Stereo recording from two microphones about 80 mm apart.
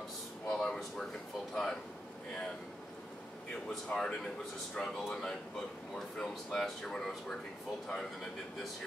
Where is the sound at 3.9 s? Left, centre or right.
Centre.